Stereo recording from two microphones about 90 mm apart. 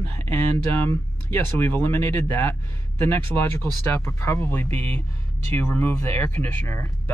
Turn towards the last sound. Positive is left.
turn(degrees=25)  # may be behind; listen again after turning